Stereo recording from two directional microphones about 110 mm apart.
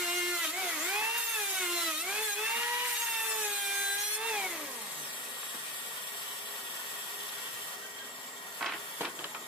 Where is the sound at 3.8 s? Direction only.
5° right (ahead or behind).